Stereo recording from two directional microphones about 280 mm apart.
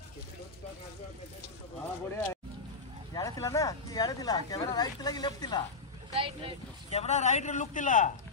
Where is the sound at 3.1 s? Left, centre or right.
Centre.